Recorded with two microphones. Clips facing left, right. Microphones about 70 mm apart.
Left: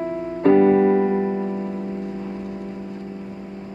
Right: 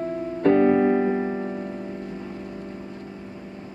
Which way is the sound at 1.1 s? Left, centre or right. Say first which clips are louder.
Left 4 dB; centre.